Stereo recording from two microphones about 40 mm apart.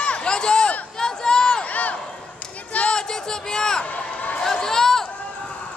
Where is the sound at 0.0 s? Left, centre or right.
Left.